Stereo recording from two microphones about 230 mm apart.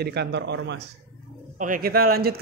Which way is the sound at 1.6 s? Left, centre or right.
Right.